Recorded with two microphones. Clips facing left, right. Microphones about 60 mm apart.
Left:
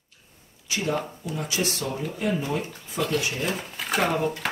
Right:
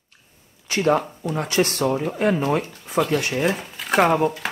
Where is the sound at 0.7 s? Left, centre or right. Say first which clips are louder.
Right 8 dB; right.